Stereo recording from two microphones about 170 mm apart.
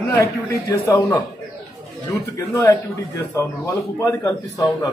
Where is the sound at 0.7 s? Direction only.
20° left (ahead or behind).